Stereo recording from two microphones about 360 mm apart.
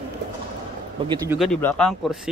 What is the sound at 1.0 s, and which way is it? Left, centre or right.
Speech, centre.